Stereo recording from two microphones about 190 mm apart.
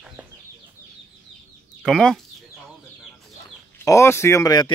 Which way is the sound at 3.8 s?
15° left (ahead or behind).